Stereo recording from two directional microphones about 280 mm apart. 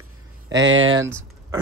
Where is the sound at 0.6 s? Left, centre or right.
Right.